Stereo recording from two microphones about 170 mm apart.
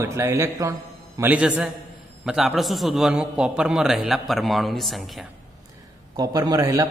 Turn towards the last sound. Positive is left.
turn(degrees=-20)  # may be behind; listen again after turning